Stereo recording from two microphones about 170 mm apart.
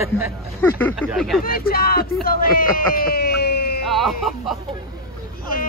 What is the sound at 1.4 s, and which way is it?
Speech, 60° left (ahead or behind).